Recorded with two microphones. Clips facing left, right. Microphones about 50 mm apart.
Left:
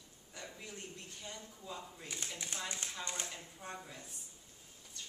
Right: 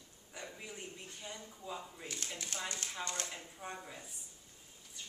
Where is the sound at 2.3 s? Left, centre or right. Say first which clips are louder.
Right 1 dB; centre.